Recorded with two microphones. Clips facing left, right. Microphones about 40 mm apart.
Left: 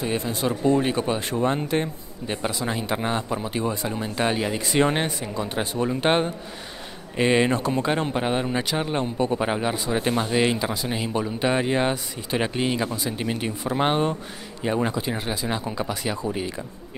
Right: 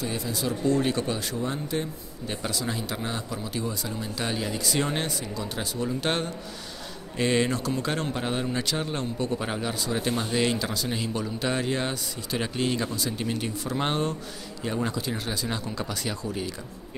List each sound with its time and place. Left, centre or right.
0.0 s speech: left
0.7 s a man's voice: left
1.3 s speech: left
2.2 s a man's voice: left